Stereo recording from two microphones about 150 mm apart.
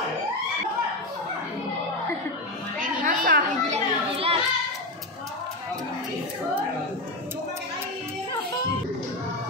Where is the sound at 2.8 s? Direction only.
65° right (ahead or behind).